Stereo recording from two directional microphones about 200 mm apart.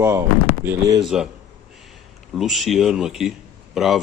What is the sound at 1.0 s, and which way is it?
Speech, centre (ahead or behind).